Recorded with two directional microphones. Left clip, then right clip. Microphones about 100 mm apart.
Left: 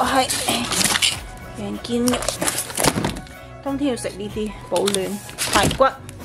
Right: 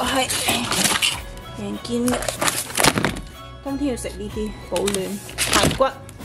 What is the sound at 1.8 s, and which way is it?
Speech, 15° left (ahead or behind).